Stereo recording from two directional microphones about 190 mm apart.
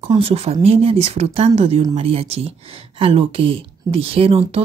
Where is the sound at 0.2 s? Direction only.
30° right (ahead or behind).